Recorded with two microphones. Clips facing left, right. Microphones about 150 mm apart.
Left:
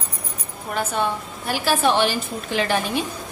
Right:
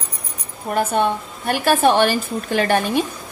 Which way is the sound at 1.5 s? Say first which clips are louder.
Right 4 dB; 55° right (ahead or behind).